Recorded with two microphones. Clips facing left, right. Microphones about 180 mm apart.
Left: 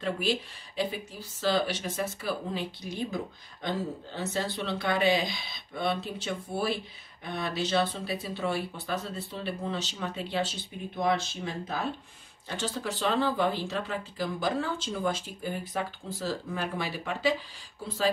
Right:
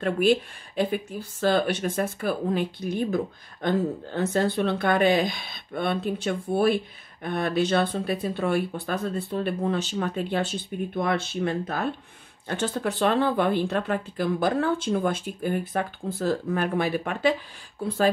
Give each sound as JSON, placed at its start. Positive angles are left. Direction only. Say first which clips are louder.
{"t": 0.0, "sound": "speech", "louder": "right 8 dB", "side_deg": -55}